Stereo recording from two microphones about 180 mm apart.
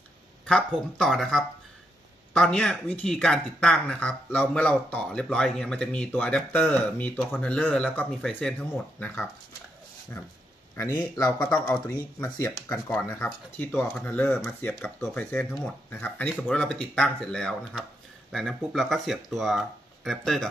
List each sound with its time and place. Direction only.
0.5 s speech: 5° left (ahead or behind)
11.0 s speech: 10° left (ahead or behind)